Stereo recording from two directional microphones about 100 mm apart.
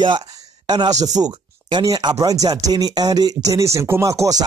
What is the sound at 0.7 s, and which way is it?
Speech, 40° right (ahead or behind).